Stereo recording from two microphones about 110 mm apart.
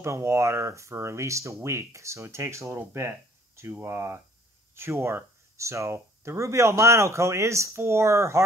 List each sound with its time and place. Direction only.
0.0 s speech: 25° right (ahead or behind)